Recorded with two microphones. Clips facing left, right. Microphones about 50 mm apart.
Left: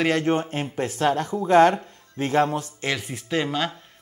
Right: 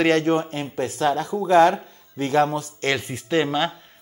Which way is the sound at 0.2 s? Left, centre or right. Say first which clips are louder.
Right 1 dB; left.